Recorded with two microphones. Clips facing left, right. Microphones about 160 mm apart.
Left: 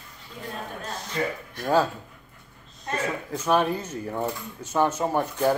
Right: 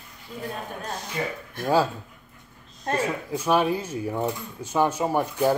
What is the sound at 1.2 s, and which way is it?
Speech, 20° right (ahead or behind).